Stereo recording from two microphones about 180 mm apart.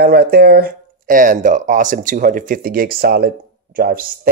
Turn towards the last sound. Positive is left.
turn(degrees=-55)  # may be behind; listen again after turning